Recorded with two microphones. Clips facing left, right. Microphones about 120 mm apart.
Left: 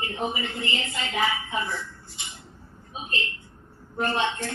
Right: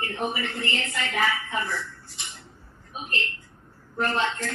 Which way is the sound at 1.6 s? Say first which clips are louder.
Even; 60° right (ahead or behind).